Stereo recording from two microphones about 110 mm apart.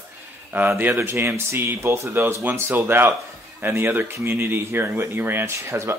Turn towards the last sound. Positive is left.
turn(degrees=-25)  # may be behind; listen again after turning